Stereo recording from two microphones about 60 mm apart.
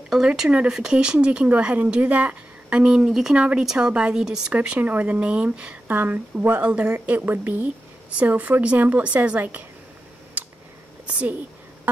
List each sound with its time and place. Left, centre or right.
0.1 s speech: centre
3.3 s speech: right
4.5 s a woman's voice: right
11.1 s speech: right